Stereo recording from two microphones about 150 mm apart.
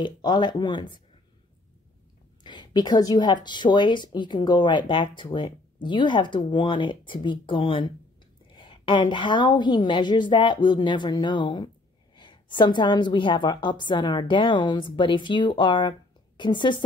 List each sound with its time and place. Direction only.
0.0 s a woman's voice: 30° left (ahead or behind)
2.4 s a woman's voice: 30° left (ahead or behind)
8.5 s a sound: 35° left (ahead or behind)
9.1 s a woman's voice: 30° left (ahead or behind)